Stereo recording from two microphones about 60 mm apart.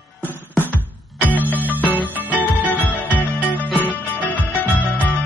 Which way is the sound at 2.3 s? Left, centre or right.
Left.